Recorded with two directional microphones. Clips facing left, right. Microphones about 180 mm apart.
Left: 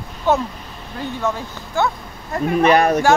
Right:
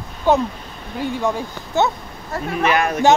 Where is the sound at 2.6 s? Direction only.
35° left (ahead or behind).